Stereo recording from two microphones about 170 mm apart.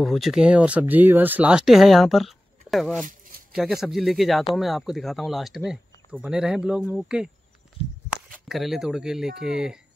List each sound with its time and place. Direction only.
0.0 s speech: centre (ahead or behind)
3.1 s a sound: 55° right (ahead or behind)
3.5 s speech: 5° right (ahead or behind)